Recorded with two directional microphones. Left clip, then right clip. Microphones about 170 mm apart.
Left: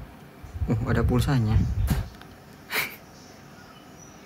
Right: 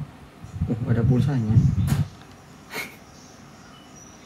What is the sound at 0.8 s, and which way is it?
Speech, 45° left (ahead or behind).